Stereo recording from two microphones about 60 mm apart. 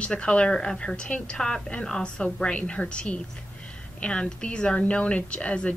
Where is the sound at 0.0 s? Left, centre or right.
Centre.